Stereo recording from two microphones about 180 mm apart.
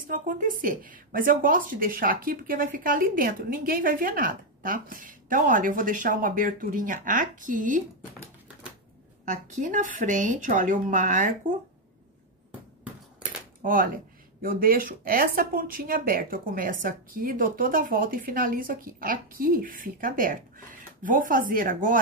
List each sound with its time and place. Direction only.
0.0 s a woman's voice: 50° right (ahead or behind)
9.2 s a woman's voice: 45° right (ahead or behind)
13.6 s a woman's voice: 50° right (ahead or behind)